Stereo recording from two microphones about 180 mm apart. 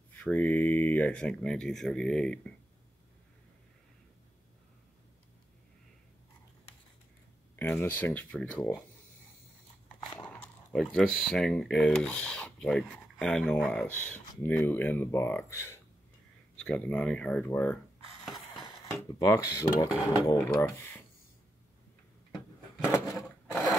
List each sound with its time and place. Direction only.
0.2 s speech: 10° left (ahead or behind)
7.5 s speech: 10° left (ahead or behind)
10.1 s dog: 5° left (ahead or behind)
10.9 s speech: centre (ahead or behind)
19.1 s speech: 20° left (ahead or behind)
22.8 s a sound: 15° left (ahead or behind)